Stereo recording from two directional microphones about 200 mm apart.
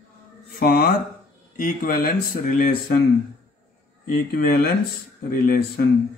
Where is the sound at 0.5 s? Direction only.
45° left (ahead or behind).